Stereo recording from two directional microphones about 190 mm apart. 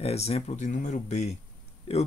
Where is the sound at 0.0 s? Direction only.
35° left (ahead or behind).